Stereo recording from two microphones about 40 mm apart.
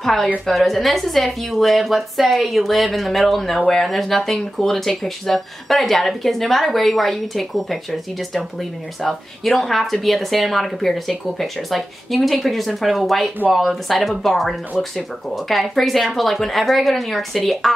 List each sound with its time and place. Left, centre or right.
0.0 s a woman's voice: centre